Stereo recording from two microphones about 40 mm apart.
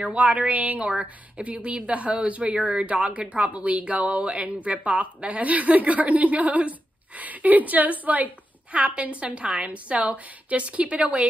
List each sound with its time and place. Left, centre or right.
0.0 s speech: right